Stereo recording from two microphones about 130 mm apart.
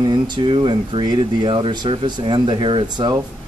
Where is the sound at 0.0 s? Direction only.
35° right (ahead or behind).